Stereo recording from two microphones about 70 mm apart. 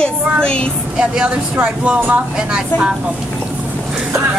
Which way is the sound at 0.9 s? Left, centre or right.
Centre.